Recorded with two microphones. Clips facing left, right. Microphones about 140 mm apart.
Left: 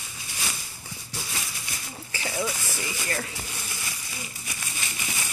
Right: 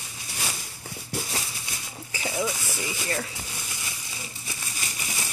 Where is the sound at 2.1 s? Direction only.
10° right (ahead or behind).